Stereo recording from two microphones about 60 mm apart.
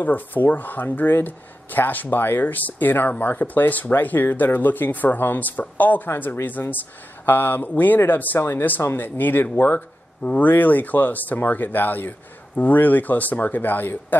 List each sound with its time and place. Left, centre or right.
0.0 s speech: left